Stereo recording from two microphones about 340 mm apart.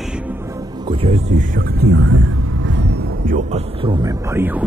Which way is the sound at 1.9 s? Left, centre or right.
Right.